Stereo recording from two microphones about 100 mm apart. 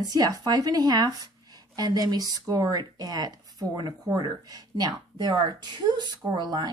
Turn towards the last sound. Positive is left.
turn(degrees=-45)  # may be behind; listen again after turning